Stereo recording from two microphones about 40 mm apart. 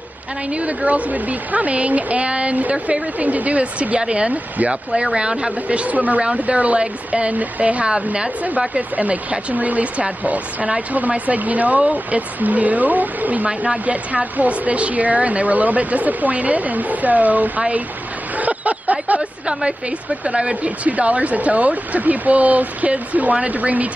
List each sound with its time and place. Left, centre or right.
0.5 s speech: right
3.2 s a woman's voice: right
4.3 s speech: right
4.9 s a woman's voice: right
7.8 s a woman's voice: right
8.9 s speech: right
18.4 s a sound: right
19.4 s speech: right